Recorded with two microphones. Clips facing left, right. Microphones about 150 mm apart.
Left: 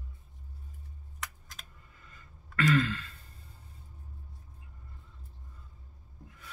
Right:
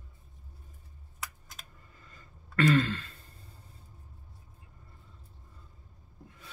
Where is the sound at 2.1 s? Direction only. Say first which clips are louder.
Right 6 dB; 35° right (ahead or behind).